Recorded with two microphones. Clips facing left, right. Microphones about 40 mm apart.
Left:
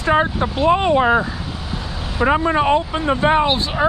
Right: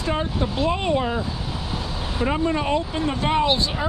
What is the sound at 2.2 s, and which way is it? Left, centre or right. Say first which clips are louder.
Speech: left 7 dB; left.